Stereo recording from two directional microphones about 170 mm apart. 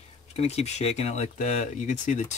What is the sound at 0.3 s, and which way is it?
Speech, 35° left (ahead or behind).